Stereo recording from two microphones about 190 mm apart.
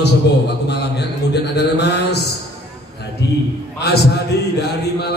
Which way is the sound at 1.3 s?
60° left (ahead or behind).